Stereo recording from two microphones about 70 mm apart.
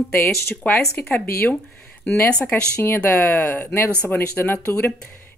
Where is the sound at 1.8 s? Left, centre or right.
Centre.